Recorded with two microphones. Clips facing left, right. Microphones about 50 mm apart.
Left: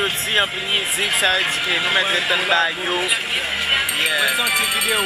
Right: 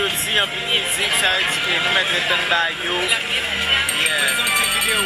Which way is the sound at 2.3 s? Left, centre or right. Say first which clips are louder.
Left 2 dB; right.